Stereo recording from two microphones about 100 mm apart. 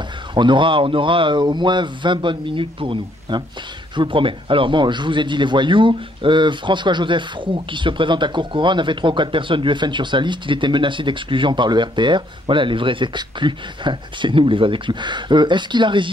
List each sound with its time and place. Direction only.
0.3 s a man's voice: 55° right (ahead or behind)